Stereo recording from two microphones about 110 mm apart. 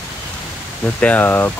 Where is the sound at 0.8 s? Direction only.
10° left (ahead or behind).